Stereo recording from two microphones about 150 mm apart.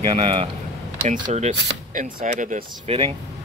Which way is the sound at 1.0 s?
55° right (ahead or behind).